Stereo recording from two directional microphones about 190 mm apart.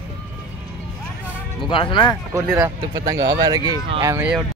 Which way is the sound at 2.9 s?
20° right (ahead or behind).